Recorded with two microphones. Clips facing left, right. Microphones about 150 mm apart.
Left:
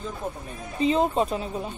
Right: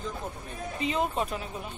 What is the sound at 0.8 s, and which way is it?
Speech, 30° left (ahead or behind).